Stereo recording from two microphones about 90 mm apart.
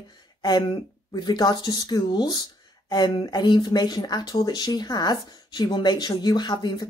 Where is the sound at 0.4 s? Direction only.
50° left (ahead or behind).